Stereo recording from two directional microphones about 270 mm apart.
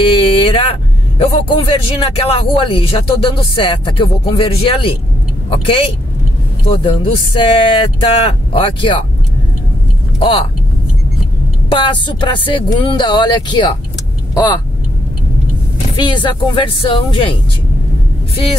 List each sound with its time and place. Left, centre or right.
0.0 s vehicle: left
2.1 s speech: centre
10.1 s speech: centre
11.7 s speech: centre
16.0 s speech: centre